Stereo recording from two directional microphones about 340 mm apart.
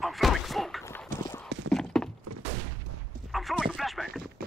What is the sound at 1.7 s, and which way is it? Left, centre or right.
Clip-clop, centre.